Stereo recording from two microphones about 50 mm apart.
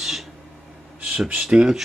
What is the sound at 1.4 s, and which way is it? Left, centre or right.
Speech, centre.